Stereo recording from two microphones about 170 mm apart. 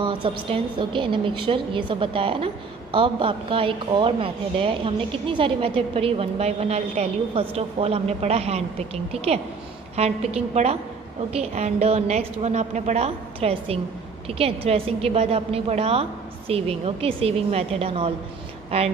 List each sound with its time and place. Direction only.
0.0 s a woman's voice: 30° right (ahead or behind)